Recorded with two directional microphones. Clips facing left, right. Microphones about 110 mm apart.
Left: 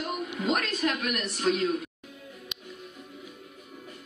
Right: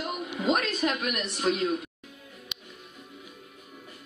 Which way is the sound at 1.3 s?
5° right (ahead or behind).